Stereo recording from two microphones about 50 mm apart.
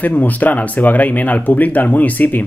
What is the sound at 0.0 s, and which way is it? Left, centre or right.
Speech, left.